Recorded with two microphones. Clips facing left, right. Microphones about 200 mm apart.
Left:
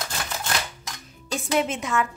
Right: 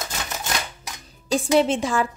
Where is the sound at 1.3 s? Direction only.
30° right (ahead or behind).